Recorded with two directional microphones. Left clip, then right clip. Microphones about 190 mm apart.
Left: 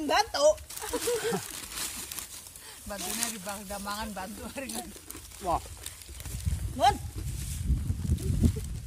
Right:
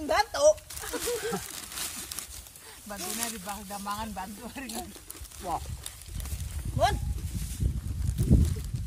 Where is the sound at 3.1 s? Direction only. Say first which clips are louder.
Even; 20° right (ahead or behind).